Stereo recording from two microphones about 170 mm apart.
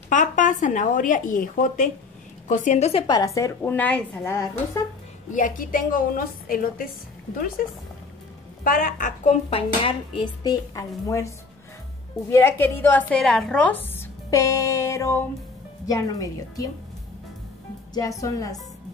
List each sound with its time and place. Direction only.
0.1 s a woman's voice: 45° left (ahead or behind)
3.1 s a woman's voice: 20° left (ahead or behind)
5.3 s a woman's voice: 50° left (ahead or behind); by 16.6 s 20° left (ahead or behind)
17.9 s speech: 20° left (ahead or behind)